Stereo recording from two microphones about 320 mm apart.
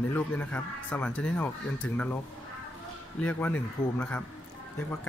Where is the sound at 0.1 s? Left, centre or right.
Centre.